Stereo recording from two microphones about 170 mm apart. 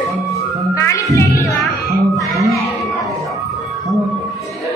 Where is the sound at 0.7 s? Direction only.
15° left (ahead or behind).